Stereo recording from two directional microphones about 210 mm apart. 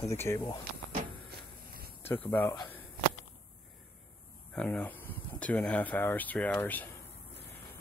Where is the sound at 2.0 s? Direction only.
10° left (ahead or behind).